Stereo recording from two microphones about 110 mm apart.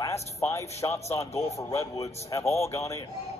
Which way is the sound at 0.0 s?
25° left (ahead or behind).